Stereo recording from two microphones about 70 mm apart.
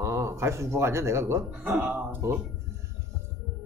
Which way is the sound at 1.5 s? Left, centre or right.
Right.